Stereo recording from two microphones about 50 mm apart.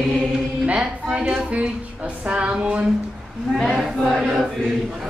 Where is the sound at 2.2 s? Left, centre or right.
Right.